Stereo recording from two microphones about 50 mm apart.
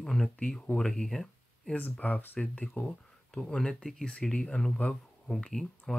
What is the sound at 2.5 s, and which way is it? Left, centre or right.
Speech, left.